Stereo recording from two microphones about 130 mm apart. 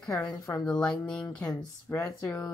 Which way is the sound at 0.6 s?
5° left (ahead or behind).